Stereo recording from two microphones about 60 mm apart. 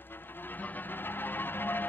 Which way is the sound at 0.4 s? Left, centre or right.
Left.